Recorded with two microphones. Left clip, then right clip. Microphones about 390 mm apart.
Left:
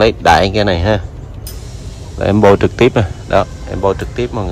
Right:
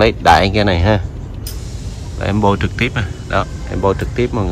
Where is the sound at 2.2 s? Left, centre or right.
Centre.